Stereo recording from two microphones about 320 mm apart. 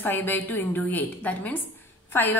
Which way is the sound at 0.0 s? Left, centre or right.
Centre.